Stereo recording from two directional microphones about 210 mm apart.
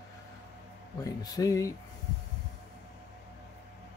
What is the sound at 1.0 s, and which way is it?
Speech, 15° left (ahead or behind).